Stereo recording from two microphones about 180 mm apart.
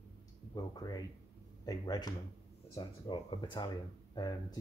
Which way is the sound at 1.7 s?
20° left (ahead or behind).